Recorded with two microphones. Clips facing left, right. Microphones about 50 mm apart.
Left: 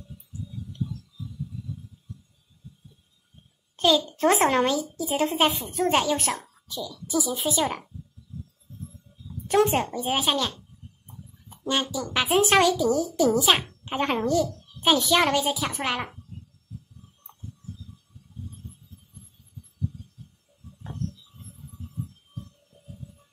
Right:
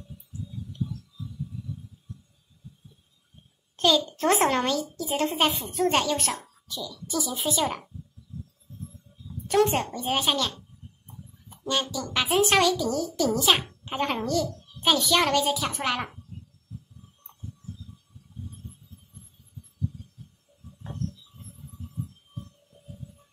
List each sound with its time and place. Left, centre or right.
3.7 s a child's voice: centre
6.7 s a woman's voice: left
7.1 s a child's voice: centre
9.5 s a child's voice: centre
11.6 s a child's voice: centre
12.1 s a child's voice: centre
13.1 s a child's voice: centre
13.4 s a child's voice: centre